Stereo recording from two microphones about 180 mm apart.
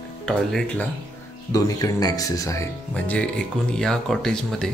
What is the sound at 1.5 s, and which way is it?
Speech, 20° left (ahead or behind).